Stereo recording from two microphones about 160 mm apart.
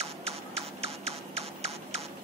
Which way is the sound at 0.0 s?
40° right (ahead or behind).